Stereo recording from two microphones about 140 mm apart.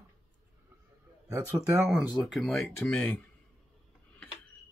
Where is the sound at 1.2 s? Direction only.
20° right (ahead or behind).